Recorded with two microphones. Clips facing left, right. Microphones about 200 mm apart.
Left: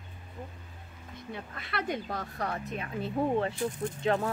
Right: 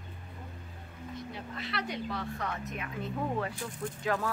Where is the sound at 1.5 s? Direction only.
55° left (ahead or behind).